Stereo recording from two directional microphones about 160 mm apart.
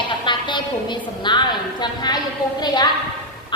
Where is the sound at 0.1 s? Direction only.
30° left (ahead or behind).